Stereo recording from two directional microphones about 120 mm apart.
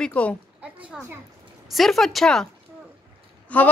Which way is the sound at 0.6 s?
10° right (ahead or behind).